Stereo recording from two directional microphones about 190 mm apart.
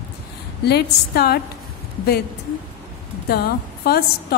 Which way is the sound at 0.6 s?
55° left (ahead or behind).